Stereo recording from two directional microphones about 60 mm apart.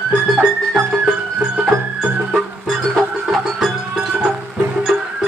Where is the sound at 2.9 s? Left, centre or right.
Centre.